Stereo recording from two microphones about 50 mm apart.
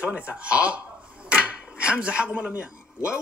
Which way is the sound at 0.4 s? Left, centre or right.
Right.